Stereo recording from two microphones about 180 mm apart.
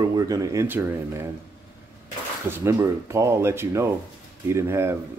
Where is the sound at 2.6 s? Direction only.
15° right (ahead or behind).